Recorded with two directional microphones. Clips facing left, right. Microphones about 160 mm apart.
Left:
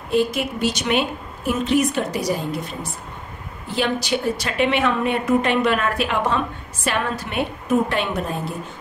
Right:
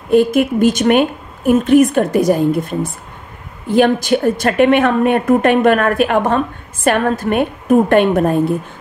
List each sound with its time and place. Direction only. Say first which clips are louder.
0.1 s a woman's voice: right 9 dB; 50° right (ahead or behind)